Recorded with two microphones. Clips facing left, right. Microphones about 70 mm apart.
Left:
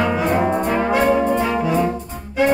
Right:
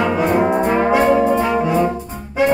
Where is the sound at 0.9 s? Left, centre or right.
Centre.